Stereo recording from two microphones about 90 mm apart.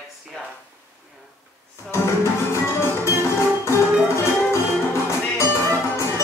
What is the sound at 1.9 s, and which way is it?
Music, 30° left (ahead or behind).